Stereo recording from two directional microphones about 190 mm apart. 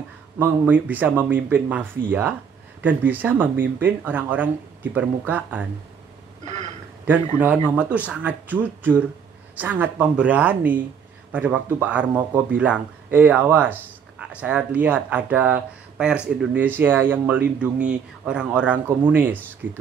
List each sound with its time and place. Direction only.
0.4 s speech: 10° right (ahead or behind)
6.4 s a sound: 40° right (ahead or behind)
7.3 s speech: 10° right (ahead or behind)